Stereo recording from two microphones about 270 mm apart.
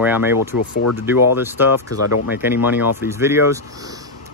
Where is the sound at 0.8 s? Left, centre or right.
Left.